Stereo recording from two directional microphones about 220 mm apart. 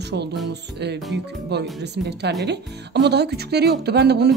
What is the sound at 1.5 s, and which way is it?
Speech, 50° right (ahead or behind).